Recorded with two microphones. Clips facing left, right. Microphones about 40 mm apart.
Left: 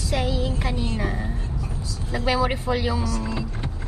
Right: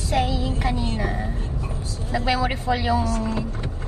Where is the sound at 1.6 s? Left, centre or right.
Right.